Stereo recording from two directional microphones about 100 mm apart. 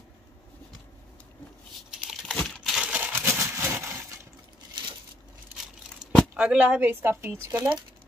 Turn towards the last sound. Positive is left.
turn(degrees=-25)  # may be behind; listen again after turning